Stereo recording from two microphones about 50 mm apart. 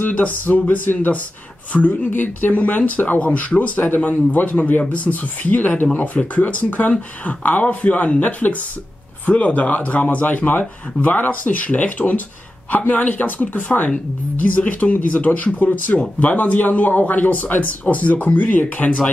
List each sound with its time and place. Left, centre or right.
0.0 s speech: left